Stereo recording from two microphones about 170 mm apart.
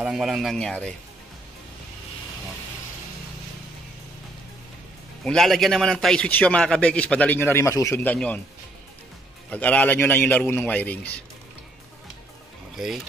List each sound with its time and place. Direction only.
0.0 s speech: centre (ahead or behind)
5.2 s a man's voice: 5° left (ahead or behind)
9.5 s a man's voice: 10° left (ahead or behind)
12.7 s speech: centre (ahead or behind)